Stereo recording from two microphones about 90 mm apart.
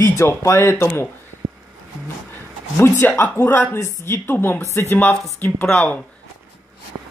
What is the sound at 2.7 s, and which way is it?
Speech, 25° left (ahead or behind).